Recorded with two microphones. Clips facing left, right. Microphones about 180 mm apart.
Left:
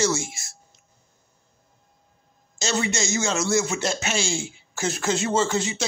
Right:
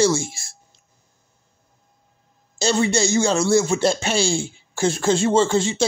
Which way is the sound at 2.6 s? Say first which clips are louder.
Right 6 dB; 30° right (ahead or behind).